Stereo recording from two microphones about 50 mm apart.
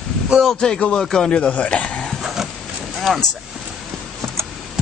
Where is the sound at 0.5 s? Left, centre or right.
Centre.